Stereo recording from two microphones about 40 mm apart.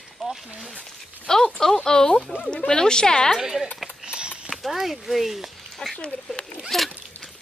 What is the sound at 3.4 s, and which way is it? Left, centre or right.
Speech, centre.